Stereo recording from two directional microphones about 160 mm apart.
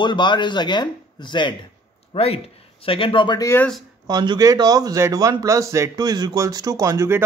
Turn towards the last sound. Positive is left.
turn(degrees=-20)  # may be behind; listen again after turning